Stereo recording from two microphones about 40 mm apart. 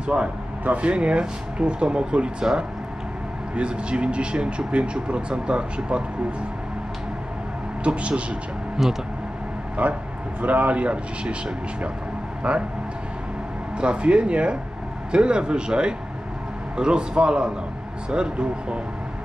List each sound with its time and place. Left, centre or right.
0.0 s speech: right
3.5 s speech: right
7.8 s speech: right
8.8 s speech: centre
9.8 s speech: right
12.4 s speech: right
13.7 s speech: right